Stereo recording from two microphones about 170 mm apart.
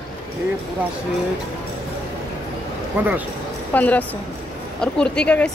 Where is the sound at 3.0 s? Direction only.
10° right (ahead or behind).